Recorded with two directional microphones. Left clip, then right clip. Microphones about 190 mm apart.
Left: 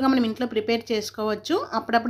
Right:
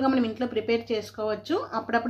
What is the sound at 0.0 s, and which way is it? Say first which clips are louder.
A woman's voice: left 2 dB; 30° left (ahead or behind).